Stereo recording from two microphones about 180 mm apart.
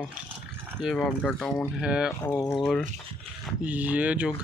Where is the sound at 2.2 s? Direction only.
10° left (ahead or behind).